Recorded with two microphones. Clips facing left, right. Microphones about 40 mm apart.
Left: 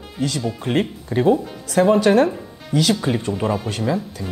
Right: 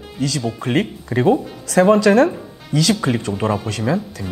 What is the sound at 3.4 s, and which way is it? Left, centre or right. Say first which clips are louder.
Speech: right 3 dB; centre.